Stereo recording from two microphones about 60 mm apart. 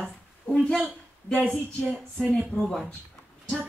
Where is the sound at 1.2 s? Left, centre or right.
Centre.